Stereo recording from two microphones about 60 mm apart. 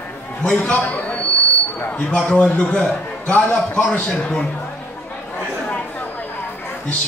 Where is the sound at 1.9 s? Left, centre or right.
Left.